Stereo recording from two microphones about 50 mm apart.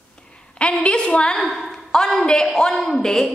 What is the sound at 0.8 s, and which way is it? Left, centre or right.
Speech, left.